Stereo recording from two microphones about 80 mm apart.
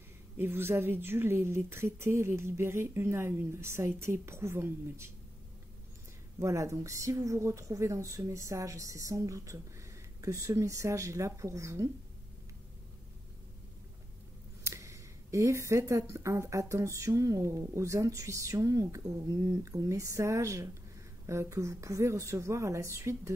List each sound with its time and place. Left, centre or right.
0.4 s speech: right
6.4 s speech: right
14.6 s speech: right